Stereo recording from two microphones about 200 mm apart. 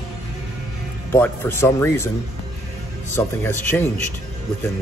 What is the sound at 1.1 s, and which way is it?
Speech, 10° left (ahead or behind).